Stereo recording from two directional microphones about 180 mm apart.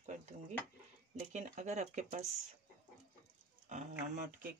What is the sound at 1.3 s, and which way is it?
Speech, 40° right (ahead or behind).